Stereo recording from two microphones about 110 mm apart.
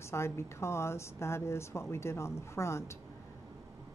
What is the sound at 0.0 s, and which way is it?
A woman's voice, 25° left (ahead or behind).